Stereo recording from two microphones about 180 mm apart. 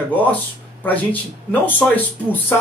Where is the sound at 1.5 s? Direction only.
10° left (ahead or behind).